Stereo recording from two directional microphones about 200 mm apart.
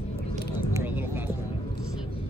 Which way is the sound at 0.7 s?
15° right (ahead or behind).